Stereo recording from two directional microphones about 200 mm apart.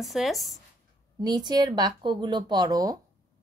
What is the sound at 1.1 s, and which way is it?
Speech, 20° right (ahead or behind).